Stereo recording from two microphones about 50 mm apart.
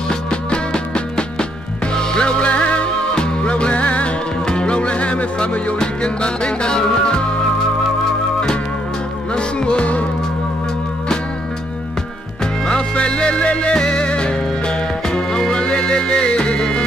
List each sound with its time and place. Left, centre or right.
0.1 s music: centre
9.3 s music: centre
12.6 s music: centre